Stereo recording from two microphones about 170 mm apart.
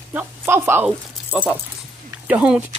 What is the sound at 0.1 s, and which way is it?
Speech, 10° right (ahead or behind).